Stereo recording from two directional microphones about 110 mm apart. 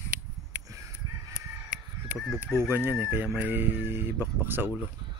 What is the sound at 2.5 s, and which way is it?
Speech, 20° right (ahead or behind).